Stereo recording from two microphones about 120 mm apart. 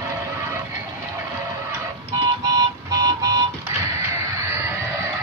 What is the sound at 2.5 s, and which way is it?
Music, 30° right (ahead or behind).